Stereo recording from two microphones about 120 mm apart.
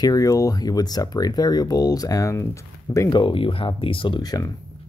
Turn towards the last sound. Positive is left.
turn(degrees=35)  # may be behind; listen again after turning